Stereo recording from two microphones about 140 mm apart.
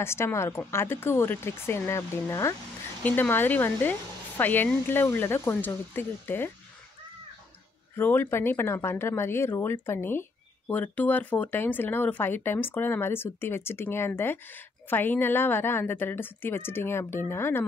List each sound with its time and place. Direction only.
0.0 s speech: 20° left (ahead or behind)
7.9 s speech: 15° left (ahead or behind)